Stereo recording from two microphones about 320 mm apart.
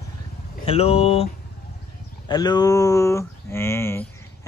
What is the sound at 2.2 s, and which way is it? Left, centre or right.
Speech, centre.